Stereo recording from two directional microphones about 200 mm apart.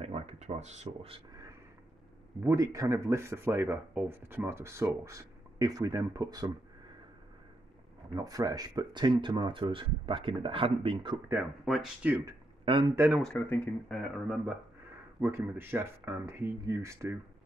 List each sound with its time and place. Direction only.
0.0 s a sound: 30° right (ahead or behind)
2.4 s speech: 15° right (ahead or behind)
8.1 s speech: 20° right (ahead or behind)
11.6 s speech: centre (ahead or behind)
12.3 s a sound: 20° right (ahead or behind)
12.9 s speech: 10° right (ahead or behind)
13.2 s speech: 5° left (ahead or behind)
15.1 s speech: 10° right (ahead or behind)